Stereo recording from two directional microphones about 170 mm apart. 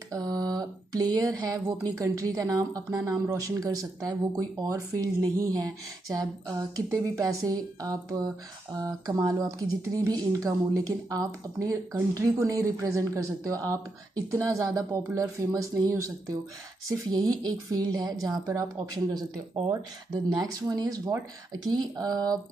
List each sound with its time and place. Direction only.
0.1 s speech: 20° right (ahead or behind)
19.7 s speech: 20° right (ahead or behind)